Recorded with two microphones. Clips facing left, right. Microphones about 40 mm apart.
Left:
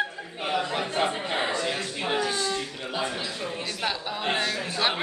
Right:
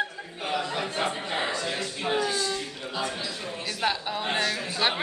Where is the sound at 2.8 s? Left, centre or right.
Left.